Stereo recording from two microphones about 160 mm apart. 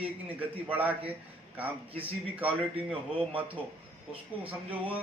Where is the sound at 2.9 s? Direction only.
35° right (ahead or behind).